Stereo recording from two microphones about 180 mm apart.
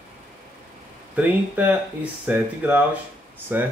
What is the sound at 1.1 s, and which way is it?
Speech, 10° right (ahead or behind).